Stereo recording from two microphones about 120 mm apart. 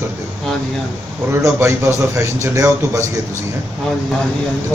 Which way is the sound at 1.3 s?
25° right (ahead or behind).